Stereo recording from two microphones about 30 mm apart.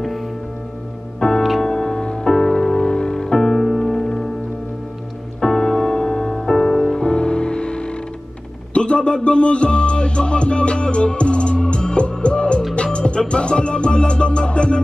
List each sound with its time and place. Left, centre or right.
1.2 s music: left
5.4 s music: centre
6.5 s music: left